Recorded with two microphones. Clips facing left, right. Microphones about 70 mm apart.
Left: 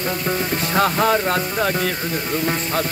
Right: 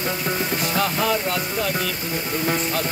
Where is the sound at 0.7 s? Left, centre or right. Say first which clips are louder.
Left 6 dB; left.